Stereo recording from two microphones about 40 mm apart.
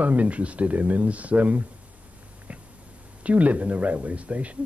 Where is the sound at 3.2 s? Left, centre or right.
Right.